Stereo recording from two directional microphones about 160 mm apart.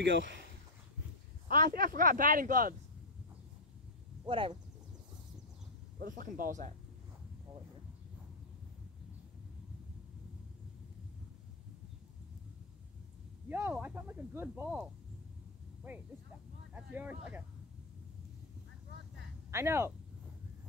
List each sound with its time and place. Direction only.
1.5 s speech: 60° right (ahead or behind)
4.3 s speech: 35° right (ahead or behind)
5.9 s speech: 60° right (ahead or behind)
13.5 s speech: 10° right (ahead or behind)
16.7 s speech: 10° right (ahead or behind)
19.5 s speech: 15° right (ahead or behind)